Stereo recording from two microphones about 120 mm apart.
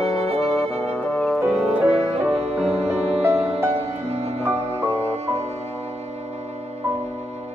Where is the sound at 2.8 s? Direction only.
60° right (ahead or behind).